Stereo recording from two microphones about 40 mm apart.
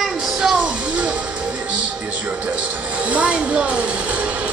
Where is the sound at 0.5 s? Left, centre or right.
Right.